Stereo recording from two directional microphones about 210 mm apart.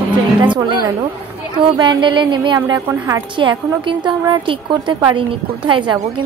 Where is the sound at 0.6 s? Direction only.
20° right (ahead or behind).